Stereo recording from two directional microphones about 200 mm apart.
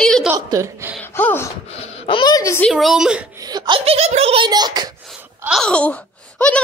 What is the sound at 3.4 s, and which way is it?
A child's voice, 20° right (ahead or behind).